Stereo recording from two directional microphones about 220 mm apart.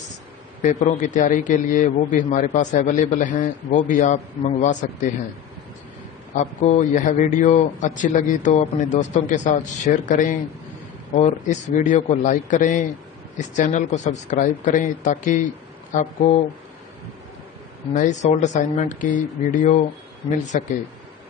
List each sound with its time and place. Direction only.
0.6 s a man's voice: 35° left (ahead or behind)
6.3 s a man's voice: 30° left (ahead or behind)
17.9 s a man's voice: 35° left (ahead or behind)